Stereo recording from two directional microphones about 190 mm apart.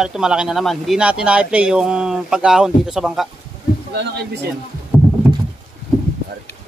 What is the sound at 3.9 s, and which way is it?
Speech, 65° right (ahead or behind).